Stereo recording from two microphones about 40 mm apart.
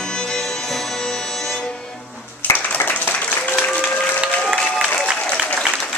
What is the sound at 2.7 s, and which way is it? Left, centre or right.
Applause, left.